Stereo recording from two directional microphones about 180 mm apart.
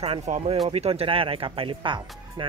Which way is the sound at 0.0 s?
35° right (ahead or behind).